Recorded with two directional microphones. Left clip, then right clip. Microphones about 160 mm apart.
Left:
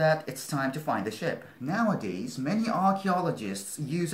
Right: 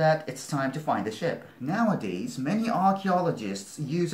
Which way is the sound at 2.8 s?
15° left (ahead or behind).